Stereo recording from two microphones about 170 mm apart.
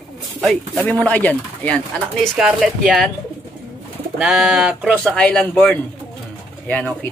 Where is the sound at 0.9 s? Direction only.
10° left (ahead or behind).